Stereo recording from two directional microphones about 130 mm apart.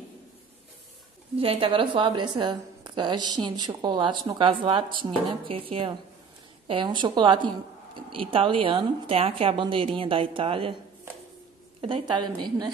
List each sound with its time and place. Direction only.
1.4 s a woman's voice: 45° right (ahead or behind)
11.8 s a woman's voice: 40° right (ahead or behind)